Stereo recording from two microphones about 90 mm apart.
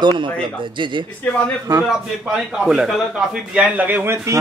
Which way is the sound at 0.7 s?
65° right (ahead or behind).